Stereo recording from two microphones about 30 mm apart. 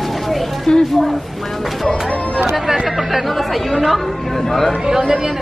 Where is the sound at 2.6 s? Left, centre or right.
Centre.